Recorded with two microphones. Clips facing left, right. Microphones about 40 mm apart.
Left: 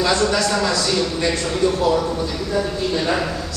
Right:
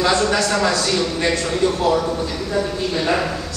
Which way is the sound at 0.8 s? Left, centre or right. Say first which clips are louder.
Right 1 dB; right.